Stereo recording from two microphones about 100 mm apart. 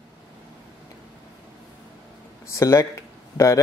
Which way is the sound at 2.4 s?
30° left (ahead or behind).